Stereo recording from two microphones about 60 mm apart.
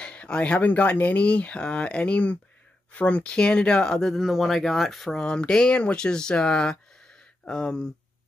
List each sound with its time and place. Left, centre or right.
0.0 s speech: centre
4.1 s speech: centre
5.2 s speech: centre